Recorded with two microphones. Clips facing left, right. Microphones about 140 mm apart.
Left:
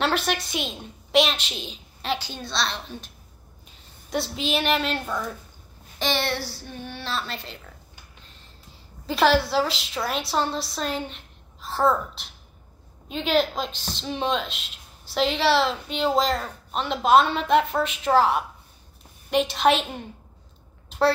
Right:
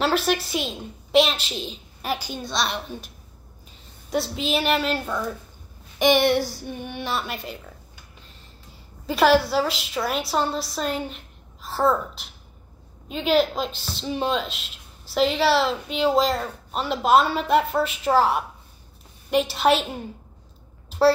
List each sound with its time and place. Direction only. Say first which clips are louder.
0.0 s a woman's voice: right 3 dB; 5° right (ahead or behind)
4.1 s a woman's voice: right 2 dB; centre (ahead or behind)
5.9 s a woman's voice: right 8 dB; 15° right (ahead or behind)
9.0 s a woman's voice: right 2 dB; 5° right (ahead or behind)